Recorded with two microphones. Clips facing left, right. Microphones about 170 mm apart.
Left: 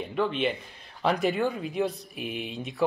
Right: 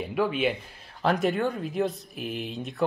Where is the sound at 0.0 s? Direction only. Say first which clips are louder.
Right 1 dB; 5° right (ahead or behind).